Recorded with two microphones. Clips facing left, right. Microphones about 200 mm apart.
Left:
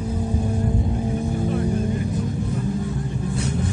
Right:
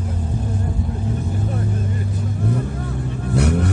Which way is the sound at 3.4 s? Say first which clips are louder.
Right 9 dB; 70° right (ahead or behind).